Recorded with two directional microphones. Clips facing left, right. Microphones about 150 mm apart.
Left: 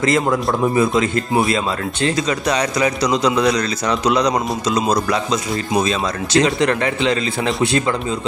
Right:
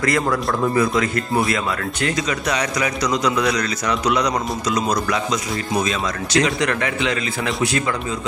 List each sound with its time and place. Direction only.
0.0 s a man's voice: 25° left (ahead or behind)